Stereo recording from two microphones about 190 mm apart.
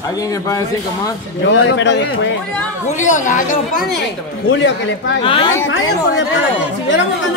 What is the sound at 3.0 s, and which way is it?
Speech, 40° left (ahead or behind).